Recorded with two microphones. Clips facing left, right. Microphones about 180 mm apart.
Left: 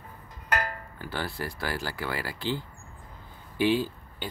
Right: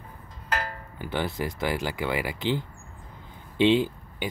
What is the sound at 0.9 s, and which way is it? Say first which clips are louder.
Speech: right 6 dB; 20° right (ahead or behind).